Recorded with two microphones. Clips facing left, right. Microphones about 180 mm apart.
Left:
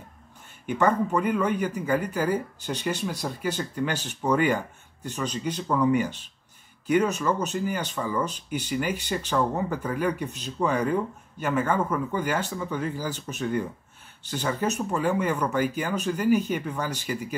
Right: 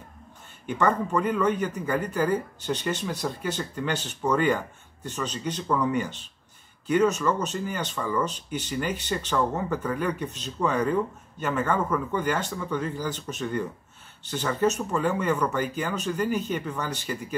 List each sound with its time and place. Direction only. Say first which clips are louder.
0.7 s speech: left 1 dB; 10° left (ahead or behind)